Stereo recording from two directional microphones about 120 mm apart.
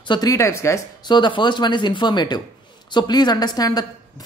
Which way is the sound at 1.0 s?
40° left (ahead or behind).